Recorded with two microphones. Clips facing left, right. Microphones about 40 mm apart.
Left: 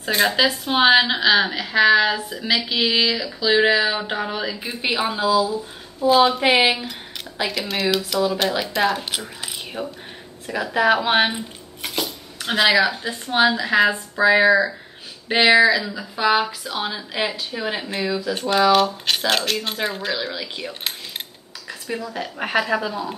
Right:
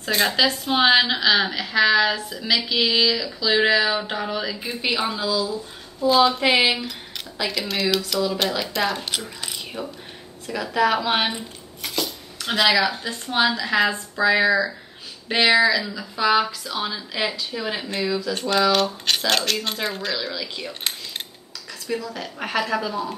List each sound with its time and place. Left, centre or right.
0.0 s a woman's voice: centre
9.2 s mechanisms: centre
10.4 s a woman's voice: centre
11.8 s dishes: centre
12.7 s a woman's voice: centre